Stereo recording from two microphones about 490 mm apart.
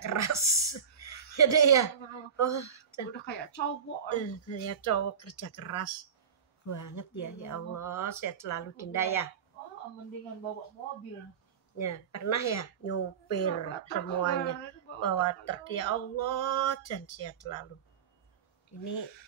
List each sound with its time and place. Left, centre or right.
0.0 s a sound: left
2.3 s speech: left
3.3 s a woman's voice: centre
11.8 s a woman's voice: left